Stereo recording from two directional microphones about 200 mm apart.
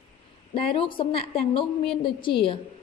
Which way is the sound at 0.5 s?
25° left (ahead or behind).